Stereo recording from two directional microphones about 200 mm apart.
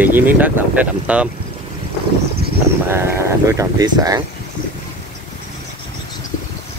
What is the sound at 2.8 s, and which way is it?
Speech, 10° right (ahead or behind).